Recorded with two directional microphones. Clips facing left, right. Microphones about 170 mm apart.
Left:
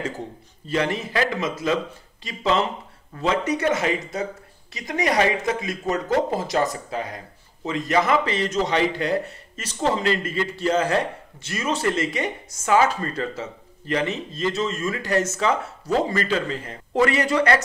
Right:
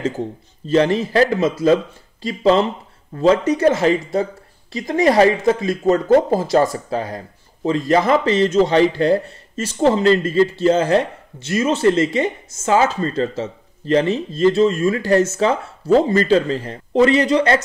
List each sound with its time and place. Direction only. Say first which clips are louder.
0.7 s a man's voice: right 8 dB; 30° right (ahead or behind)
16.9 s speech: right 6 dB; 25° right (ahead or behind)